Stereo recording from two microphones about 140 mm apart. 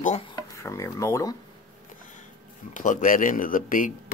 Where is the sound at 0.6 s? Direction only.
20° left (ahead or behind).